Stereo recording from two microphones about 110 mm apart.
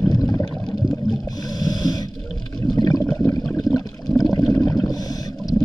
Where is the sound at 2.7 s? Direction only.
35° left (ahead or behind).